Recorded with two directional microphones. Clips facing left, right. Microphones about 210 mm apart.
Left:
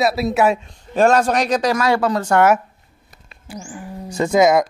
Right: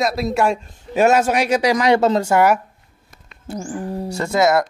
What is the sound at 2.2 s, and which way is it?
Speech, centre (ahead or behind).